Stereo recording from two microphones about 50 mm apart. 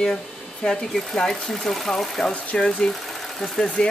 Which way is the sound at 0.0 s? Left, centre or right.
Centre.